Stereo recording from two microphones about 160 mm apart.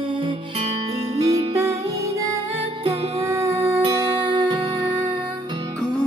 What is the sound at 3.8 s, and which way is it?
Music, 30° right (ahead or behind).